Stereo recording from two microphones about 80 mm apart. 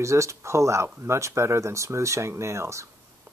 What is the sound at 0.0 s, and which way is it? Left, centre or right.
Speech, right.